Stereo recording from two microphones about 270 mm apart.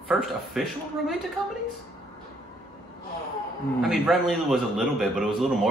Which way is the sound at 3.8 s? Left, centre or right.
Centre.